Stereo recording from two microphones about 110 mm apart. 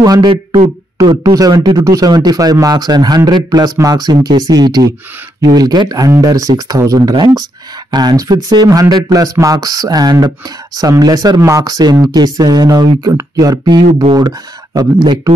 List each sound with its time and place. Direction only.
0.0 s speech: 35° right (ahead or behind)